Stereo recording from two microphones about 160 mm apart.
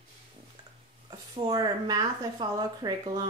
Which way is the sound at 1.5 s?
25° right (ahead or behind).